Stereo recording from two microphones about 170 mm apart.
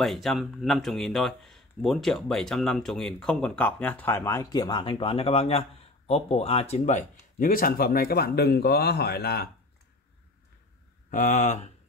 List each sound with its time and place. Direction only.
0.0 s speech: centre (ahead or behind); by 9.5 s 70° left (ahead or behind)
11.1 s speech: 50° left (ahead or behind)